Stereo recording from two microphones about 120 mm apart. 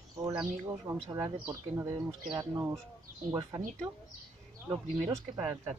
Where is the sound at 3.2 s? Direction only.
30° right (ahead or behind).